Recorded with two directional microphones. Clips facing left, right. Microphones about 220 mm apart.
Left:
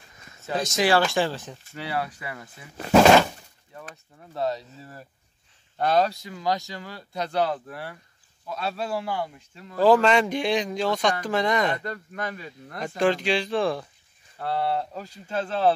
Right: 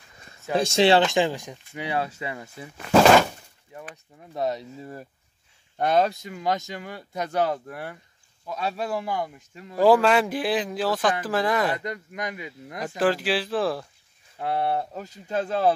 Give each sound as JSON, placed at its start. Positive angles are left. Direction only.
{"t": 0.6, "sound": "speech", "side_deg": -30}
{"t": 3.7, "sound": "a man's voice", "side_deg": -15}
{"t": 11.8, "sound": "speech", "side_deg": -15}
{"t": 12.8, "sound": "a man's voice", "side_deg": -5}
{"t": 14.4, "sound": "speech", "side_deg": -20}